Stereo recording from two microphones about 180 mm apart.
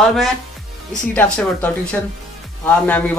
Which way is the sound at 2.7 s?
10° left (ahead or behind).